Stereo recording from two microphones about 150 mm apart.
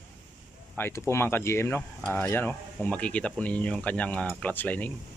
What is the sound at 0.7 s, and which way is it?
Speech, 15° left (ahead or behind).